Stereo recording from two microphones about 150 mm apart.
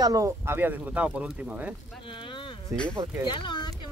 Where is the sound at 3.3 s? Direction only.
30° left (ahead or behind).